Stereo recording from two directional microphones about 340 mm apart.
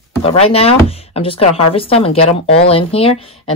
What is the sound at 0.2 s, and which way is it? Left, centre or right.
Speech, centre.